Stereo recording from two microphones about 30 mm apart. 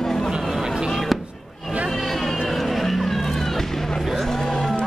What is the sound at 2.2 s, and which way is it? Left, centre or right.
Music, centre.